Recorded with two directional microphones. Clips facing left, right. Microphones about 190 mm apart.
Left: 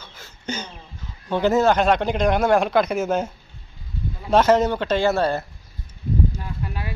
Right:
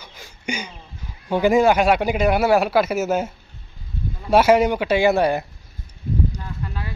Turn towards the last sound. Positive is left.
turn(degrees=15)  # may be behind; listen again after turning